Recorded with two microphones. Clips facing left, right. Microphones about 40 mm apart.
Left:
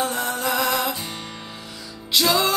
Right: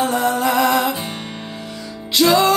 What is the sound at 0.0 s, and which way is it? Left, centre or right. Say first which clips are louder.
Music: right 7 dB; centre.